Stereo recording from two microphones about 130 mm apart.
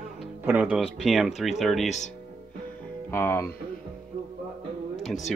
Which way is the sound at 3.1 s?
20° left (ahead or behind).